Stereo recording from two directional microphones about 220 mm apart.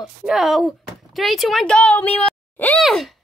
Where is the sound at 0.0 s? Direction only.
Centre (ahead or behind).